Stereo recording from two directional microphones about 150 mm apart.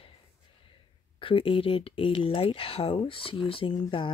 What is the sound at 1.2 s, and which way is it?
Speech, 35° left (ahead or behind).